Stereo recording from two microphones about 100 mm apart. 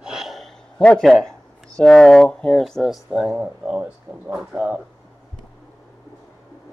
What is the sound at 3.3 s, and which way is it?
Speech, 10° right (ahead or behind).